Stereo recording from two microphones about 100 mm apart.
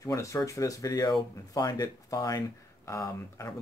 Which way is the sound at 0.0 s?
35° left (ahead or behind).